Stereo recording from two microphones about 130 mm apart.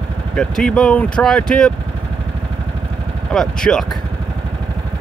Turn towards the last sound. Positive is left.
turn(degrees=5)  # may be behind; listen again after turning